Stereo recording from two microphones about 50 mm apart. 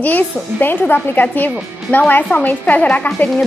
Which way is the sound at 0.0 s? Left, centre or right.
Left.